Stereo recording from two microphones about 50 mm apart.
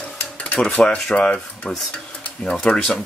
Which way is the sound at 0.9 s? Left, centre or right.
Left.